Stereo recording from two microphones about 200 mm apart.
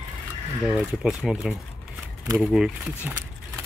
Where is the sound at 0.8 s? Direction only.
5° right (ahead or behind).